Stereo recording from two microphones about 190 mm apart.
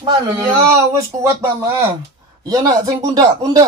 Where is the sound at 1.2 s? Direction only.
15° right (ahead or behind).